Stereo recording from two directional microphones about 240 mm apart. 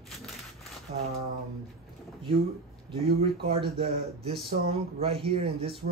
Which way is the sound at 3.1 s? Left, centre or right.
Right.